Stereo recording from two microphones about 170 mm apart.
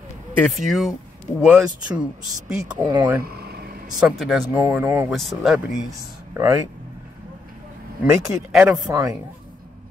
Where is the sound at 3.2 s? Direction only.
65° right (ahead or behind).